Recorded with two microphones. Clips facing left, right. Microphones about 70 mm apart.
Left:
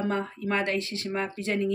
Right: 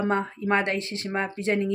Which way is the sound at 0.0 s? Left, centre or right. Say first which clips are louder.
Right 3 dB; right.